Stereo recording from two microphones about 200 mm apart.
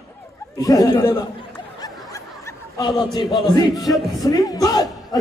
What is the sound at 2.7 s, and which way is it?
A man's voice, 20° left (ahead or behind).